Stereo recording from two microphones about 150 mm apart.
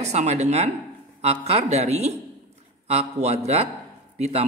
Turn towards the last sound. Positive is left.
turn(degrees=-45)  # may be behind; listen again after turning